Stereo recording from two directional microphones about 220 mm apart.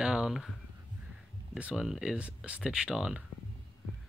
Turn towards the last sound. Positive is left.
turn(degrees=-5)  # may be behind; listen again after turning